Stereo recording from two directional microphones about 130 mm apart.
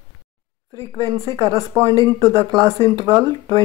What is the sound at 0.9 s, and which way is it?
Speech, 25° right (ahead or behind).